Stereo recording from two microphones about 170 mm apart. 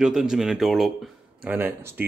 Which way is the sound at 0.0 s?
5° right (ahead or behind).